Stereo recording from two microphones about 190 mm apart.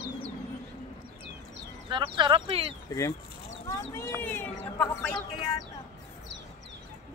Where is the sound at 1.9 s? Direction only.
25° right (ahead or behind).